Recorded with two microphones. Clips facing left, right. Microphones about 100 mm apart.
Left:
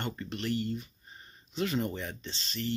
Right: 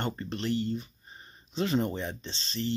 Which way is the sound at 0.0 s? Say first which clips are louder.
Right 3 dB; 35° right (ahead or behind).